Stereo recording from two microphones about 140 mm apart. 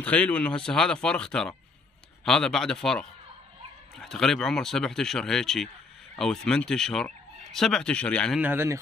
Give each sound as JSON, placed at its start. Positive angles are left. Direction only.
{"t": 0.0, "sound": "speech", "side_deg": 10}
{"t": 8.4, "sound": "speech", "side_deg": -15}